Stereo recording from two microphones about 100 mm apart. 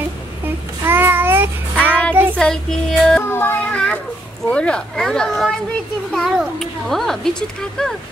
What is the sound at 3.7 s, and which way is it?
A woman's voice, 10° left (ahead or behind).